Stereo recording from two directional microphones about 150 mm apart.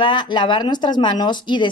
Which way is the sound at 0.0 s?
30° left (ahead or behind).